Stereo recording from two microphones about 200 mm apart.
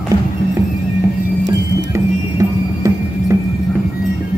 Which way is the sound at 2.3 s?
15° right (ahead or behind).